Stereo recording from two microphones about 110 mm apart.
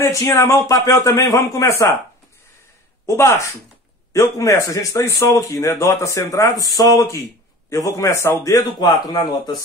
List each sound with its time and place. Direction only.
0.0 s a man's voice: 25° left (ahead or behind)
3.1 s a man's voice: 25° left (ahead or behind)
9.1 s speech: 40° left (ahead or behind)